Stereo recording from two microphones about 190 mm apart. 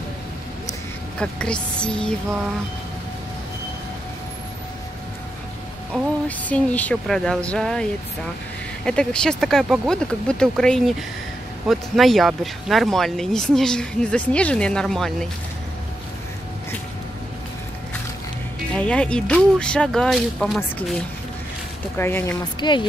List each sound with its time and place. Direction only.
1.2 s speech: 5° left (ahead or behind)
6.2 s speech: 10° left (ahead or behind)
8.8 s speech: 5° left (ahead or behind)
18.8 s speech: 5° left (ahead or behind)
21.9 s speech: 10° left (ahead or behind)
22.4 s speech: 25° left (ahead or behind)